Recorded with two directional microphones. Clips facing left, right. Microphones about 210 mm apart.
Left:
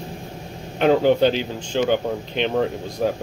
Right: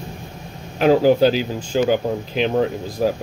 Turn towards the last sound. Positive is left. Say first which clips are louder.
# right 2 dB
turn(degrees=-5)  # may be behind; listen again after turning